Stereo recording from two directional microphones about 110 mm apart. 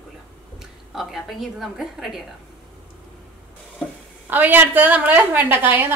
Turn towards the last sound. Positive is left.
turn(degrees=-20)  # may be behind; listen again after turning